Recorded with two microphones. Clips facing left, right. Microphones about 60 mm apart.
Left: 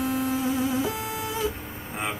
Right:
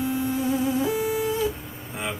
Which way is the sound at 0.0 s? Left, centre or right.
Left.